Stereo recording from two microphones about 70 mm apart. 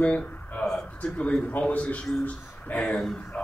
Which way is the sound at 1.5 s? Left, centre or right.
Left.